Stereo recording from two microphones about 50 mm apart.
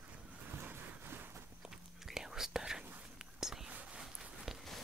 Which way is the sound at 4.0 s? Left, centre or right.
Centre.